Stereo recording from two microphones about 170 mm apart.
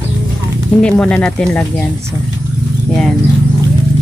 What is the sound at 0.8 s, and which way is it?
Speech, 5° left (ahead or behind).